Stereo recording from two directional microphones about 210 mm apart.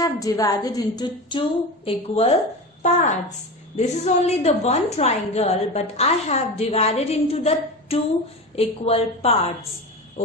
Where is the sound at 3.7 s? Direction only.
30° left (ahead or behind).